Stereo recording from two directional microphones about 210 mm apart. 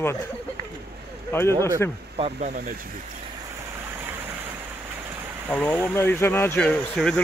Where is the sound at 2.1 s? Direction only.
30° right (ahead or behind).